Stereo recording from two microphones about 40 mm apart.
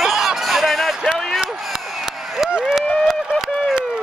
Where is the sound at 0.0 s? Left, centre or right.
Centre.